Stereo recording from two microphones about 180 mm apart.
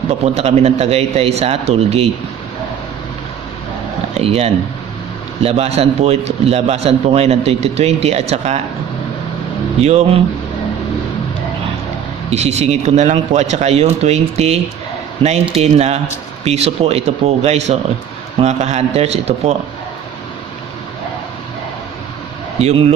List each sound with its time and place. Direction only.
0.2 s a man's voice: 35° right (ahead or behind)
4.1 s a man's voice: 35° right (ahead or behind)
9.8 s a man's voice: 35° right (ahead or behind)
12.3 s a man's voice: 35° right (ahead or behind)
22.6 s a man's voice: 35° right (ahead or behind)